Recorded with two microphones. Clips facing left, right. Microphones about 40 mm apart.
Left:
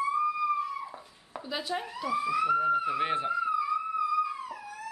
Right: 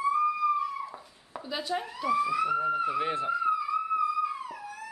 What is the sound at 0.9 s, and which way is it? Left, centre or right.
Dog, centre.